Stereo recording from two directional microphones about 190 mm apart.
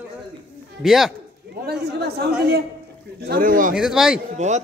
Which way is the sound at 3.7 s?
5° right (ahead or behind).